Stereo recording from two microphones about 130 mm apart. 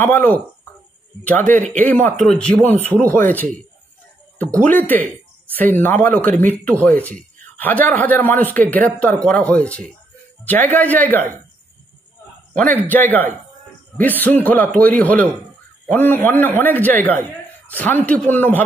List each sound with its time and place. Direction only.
0.0 s a man's voice: 15° left (ahead or behind)
1.7 s a man's voice: 15° left (ahead or behind)
12.7 s a man's voice: 15° left (ahead or behind)